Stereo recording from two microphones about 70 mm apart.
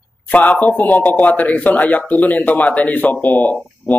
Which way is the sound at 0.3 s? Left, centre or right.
Left.